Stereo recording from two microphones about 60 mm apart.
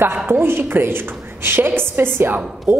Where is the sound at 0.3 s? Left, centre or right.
Right.